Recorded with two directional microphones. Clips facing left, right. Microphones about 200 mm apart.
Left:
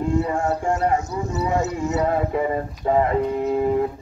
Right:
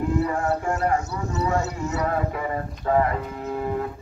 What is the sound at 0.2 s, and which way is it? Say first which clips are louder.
A man's voice: left 1 dB; 25° left (ahead or behind).